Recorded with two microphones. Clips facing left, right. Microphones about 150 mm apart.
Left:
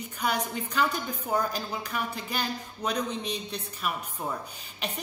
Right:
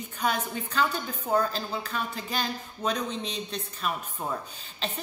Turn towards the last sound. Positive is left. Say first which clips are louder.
# right 1 dB
turn(degrees=10)  # may be behind; listen again after turning